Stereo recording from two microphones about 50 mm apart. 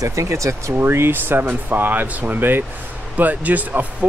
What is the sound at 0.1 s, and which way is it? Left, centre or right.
Speech, right.